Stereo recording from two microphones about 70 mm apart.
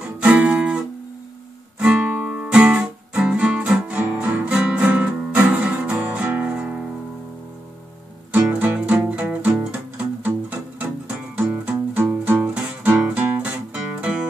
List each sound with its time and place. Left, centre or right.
0.2 s music: centre
1.8 s guitar: centre
3.6 s music: centre
5.7 s music: centre
8.3 s music: right